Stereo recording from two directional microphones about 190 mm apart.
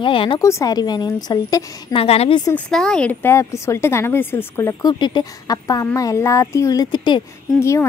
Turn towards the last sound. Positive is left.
turn(degrees=15)  # may be behind; listen again after turning